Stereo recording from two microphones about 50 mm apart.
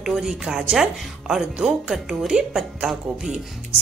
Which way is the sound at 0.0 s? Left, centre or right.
Centre.